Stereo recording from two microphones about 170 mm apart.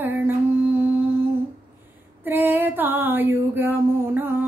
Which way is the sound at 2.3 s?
10° right (ahead or behind).